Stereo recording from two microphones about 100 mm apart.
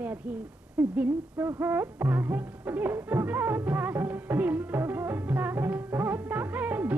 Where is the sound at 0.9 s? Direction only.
20° right (ahead or behind).